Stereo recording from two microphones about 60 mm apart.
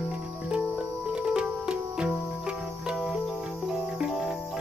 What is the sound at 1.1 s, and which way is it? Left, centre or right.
Sitar, centre.